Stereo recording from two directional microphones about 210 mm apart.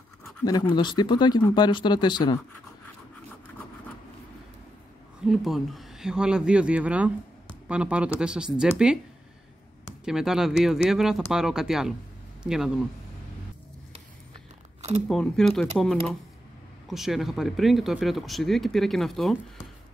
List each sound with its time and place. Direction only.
0.5 s speech: 20° left (ahead or behind)
5.2 s speech: centre (ahead or behind)
10.0 s speech: centre (ahead or behind)
15.0 s speech: centre (ahead or behind)